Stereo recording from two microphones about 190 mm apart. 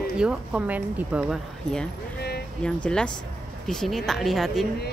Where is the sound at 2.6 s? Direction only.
5° left (ahead or behind).